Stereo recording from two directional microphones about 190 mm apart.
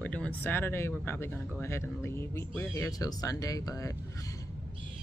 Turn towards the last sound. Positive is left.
turn(degrees=20)  # may be behind; listen again after turning